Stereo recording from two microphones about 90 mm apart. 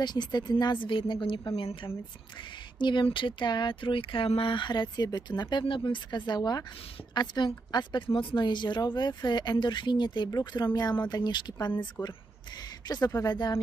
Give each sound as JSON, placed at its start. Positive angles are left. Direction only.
{"t": 0.0, "sound": "a woman's voice", "side_deg": 50}